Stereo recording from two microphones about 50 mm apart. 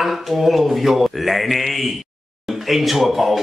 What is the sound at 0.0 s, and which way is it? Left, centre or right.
A man's voice, centre.